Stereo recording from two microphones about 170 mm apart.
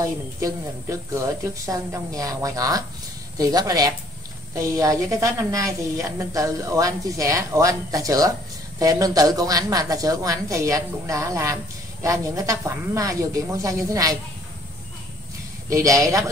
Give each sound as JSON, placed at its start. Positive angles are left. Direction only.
{"t": 0.4, "sound": "a woman's voice", "side_deg": -20}
{"t": 15.7, "sound": "a woman's voice", "side_deg": -20}